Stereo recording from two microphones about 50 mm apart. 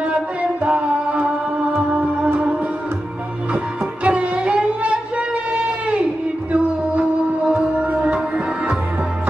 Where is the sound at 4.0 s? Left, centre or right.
Right.